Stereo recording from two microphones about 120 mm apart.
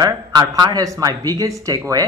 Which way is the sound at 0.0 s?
30° right (ahead or behind).